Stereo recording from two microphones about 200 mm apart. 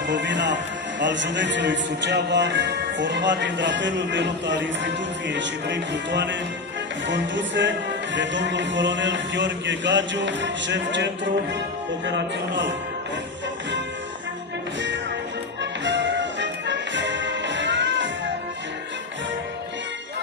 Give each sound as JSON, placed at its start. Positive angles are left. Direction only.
{"t": 0.1, "sound": "a man's voice", "side_deg": -60}
{"t": 12.1, "sound": "a man's voice", "side_deg": -65}
{"t": 15.6, "sound": "music", "side_deg": -60}